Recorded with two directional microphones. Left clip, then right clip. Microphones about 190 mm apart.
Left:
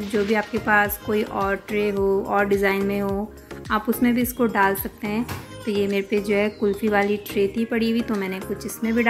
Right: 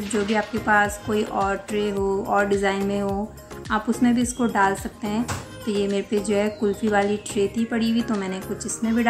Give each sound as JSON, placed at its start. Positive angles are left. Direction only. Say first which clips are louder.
{"t": 0.3, "sound": "speech", "louder": "even", "side_deg": 15}